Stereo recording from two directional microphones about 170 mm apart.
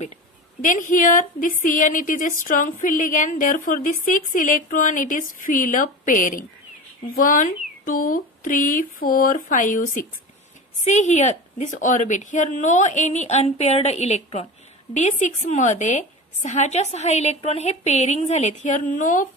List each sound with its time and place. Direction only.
0.6 s a woman's voice: 50° left (ahead or behind)